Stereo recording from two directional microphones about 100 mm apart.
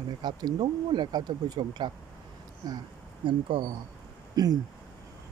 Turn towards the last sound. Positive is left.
turn(degrees=-40)  # may be behind; listen again after turning